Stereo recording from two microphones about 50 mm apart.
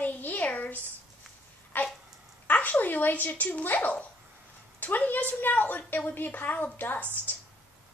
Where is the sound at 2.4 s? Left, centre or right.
Left.